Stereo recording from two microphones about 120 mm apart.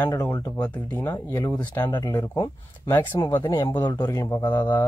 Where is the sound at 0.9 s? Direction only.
20° left (ahead or behind).